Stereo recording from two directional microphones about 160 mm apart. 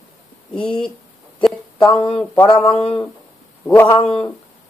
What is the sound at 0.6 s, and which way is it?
Speech, 5° left (ahead or behind).